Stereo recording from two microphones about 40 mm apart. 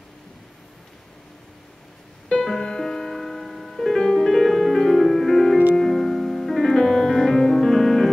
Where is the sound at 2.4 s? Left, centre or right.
Centre.